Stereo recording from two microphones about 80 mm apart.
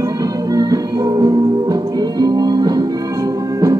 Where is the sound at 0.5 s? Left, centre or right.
Right.